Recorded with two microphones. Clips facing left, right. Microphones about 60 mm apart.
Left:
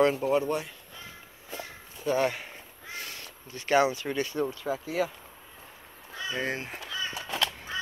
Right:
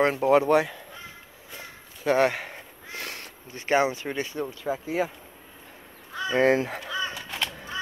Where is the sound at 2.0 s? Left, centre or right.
Right.